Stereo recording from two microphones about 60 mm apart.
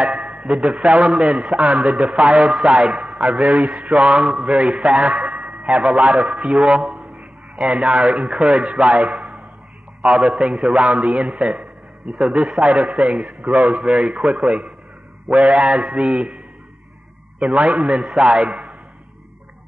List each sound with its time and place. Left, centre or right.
0.0 s a sound: centre
0.5 s a man's voice: centre
5.1 s a sound: centre
5.8 s a man's voice: centre
7.2 s a sound: centre
8.2 s a man's voice: centre
9.1 s a sound: centre
10.2 s a man's voice: centre
13.4 s a man's voice: right
13.7 s a man's voice: centre
17.4 s a man's voice: centre
17.7 s a man's voice: centre